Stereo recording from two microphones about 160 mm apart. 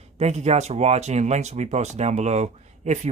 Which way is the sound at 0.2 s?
45° right (ahead or behind).